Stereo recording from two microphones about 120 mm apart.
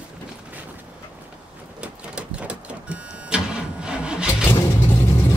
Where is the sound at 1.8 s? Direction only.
10° right (ahead or behind).